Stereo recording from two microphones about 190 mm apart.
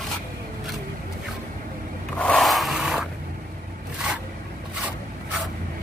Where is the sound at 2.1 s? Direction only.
5° left (ahead or behind).